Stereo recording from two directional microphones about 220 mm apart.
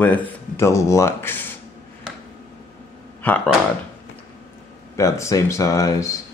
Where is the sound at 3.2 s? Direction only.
10° left (ahead or behind).